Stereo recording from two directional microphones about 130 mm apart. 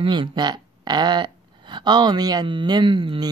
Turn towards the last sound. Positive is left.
turn(degrees=-40)  # may be behind; listen again after turning